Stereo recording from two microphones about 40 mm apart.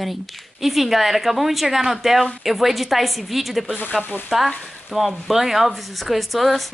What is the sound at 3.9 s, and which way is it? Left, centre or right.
Frying, left.